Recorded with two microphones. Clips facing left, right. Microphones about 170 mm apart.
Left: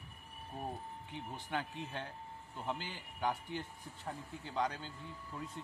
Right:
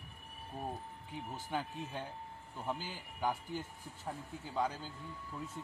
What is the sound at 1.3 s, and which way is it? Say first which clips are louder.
Speech: right 1 dB; 5° right (ahead or behind).